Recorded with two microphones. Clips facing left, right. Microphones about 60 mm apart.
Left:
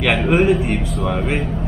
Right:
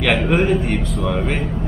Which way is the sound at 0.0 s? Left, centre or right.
Centre.